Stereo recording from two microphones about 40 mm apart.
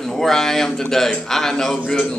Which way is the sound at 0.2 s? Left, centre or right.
Centre.